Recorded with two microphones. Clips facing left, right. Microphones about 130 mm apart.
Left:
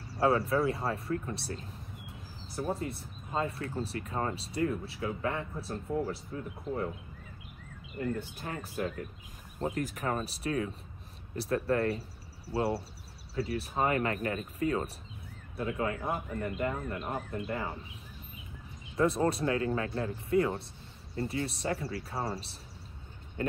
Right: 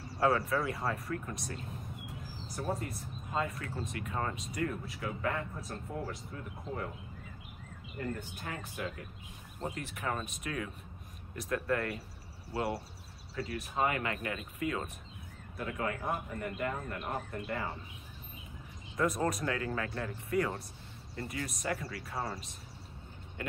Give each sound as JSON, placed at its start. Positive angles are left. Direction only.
{"t": 0.2, "sound": "speech", "side_deg": 25}
{"t": 2.8, "sound": "speech", "side_deg": 30}
{"t": 8.2, "sound": "speech", "side_deg": 35}
{"t": 15.5, "sound": "speech", "side_deg": 25}
{"t": 18.9, "sound": "speech", "side_deg": 30}